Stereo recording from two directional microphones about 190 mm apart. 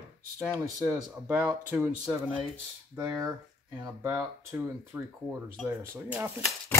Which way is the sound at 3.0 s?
15° right (ahead or behind).